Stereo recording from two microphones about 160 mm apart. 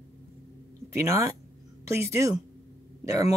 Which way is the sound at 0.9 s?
20° right (ahead or behind).